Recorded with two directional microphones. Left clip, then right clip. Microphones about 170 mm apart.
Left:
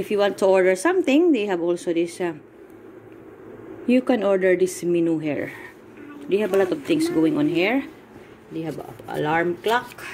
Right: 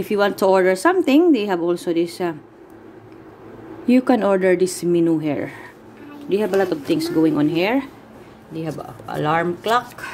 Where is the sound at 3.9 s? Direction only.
20° right (ahead or behind); by 10.1 s centre (ahead or behind).